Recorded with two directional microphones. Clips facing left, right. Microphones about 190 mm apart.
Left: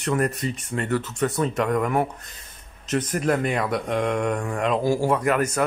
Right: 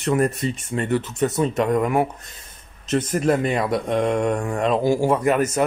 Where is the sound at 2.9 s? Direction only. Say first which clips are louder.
Right 3 dB; 25° right (ahead or behind).